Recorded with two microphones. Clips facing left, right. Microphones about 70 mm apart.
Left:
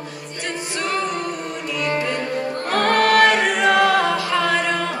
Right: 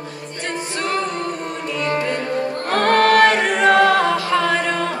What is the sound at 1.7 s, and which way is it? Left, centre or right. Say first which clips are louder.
Music: right 1 dB; right.